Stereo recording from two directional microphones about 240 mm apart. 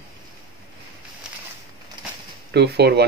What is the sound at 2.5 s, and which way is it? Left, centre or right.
Speech, right.